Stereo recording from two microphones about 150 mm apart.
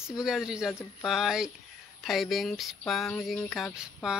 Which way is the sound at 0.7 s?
15° left (ahead or behind).